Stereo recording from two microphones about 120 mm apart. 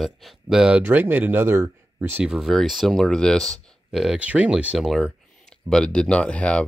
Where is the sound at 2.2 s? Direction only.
5° right (ahead or behind).